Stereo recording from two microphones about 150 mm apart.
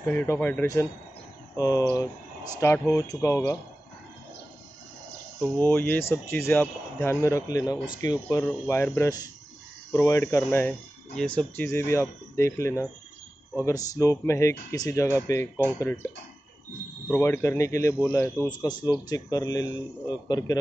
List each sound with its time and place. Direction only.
0.1 s speech: 15° left (ahead or behind)
5.4 s speech: 10° left (ahead or behind)
17.1 s speech: 15° left (ahead or behind)